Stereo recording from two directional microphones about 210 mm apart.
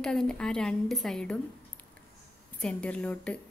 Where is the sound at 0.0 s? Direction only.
5° left (ahead or behind).